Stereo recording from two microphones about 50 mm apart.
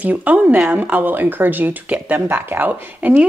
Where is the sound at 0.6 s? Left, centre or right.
Right.